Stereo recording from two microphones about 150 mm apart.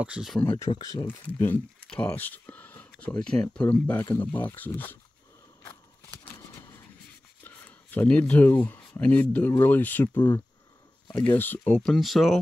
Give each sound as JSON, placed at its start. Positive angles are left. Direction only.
{"t": 0.0, "sound": "speech", "side_deg": -5}
{"t": 0.7, "sound": "speech", "side_deg": 30}
{"t": 1.0, "sound": "speech", "side_deg": 15}
{"t": 6.0, "sound": "a sound", "side_deg": 10}
{"t": 7.4, "sound": "speech", "side_deg": 10}